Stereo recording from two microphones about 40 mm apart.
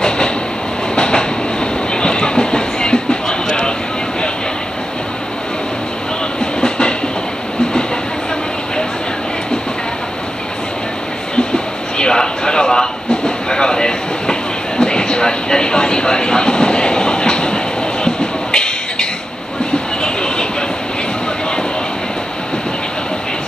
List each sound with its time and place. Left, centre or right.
0.9 s train: left
6.6 s train: left
11.3 s a sound: left
14.8 s vehicle: left
18.0 s a sound: left
20.0 s vehicle: left